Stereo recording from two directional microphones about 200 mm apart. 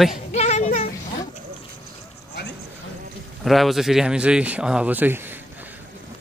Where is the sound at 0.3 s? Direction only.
35° left (ahead or behind).